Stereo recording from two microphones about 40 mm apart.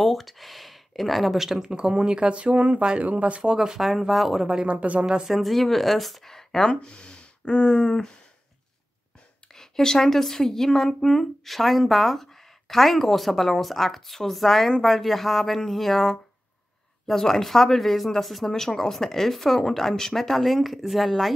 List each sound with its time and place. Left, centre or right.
0.0 s speech: centre; by 3.0 s right
3.0 s speech: right
3.4 s speech: centre
3.8 s speech: centre
4.6 s speech: right
5.0 s speech: centre
5.3 s speech: centre
6.7 s speech: left
9.5 s speech: centre
18.5 s speech: centre